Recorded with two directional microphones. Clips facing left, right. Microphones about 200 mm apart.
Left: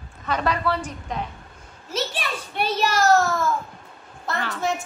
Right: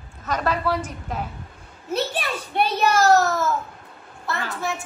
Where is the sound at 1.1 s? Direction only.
5° right (ahead or behind).